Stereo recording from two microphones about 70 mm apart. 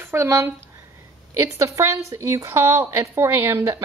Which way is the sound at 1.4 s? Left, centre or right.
Right.